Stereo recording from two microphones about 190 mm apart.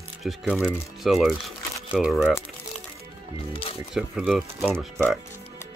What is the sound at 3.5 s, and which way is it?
Speech, 30° left (ahead or behind).